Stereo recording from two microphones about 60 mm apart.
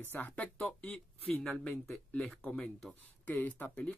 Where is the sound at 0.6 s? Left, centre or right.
Left.